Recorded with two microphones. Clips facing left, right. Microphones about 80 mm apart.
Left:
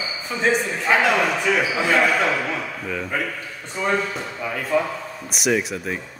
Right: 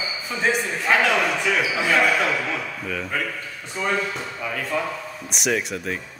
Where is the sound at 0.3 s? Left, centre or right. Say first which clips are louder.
Left 2 dB; centre.